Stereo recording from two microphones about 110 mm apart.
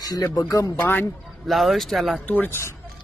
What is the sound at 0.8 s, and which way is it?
Speech, 15° left (ahead or behind).